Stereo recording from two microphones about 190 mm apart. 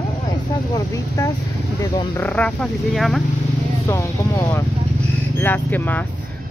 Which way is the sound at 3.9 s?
15° left (ahead or behind).